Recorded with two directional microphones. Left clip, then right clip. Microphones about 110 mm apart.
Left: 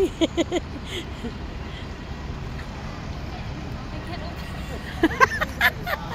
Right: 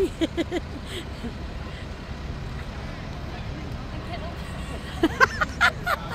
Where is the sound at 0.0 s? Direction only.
5° left (ahead or behind).